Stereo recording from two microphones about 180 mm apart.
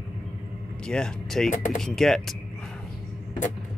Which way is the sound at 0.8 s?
5° left (ahead or behind).